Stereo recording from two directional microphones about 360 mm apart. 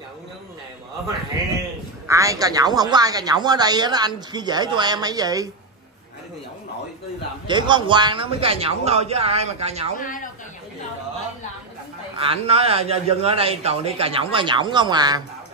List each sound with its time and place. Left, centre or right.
2.0 s a man's voice: centre
7.4 s a man's voice: centre
9.9 s a man's voice: left
12.2 s a man's voice: centre